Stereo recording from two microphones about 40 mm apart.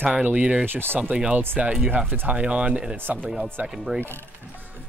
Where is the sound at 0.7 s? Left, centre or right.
Right.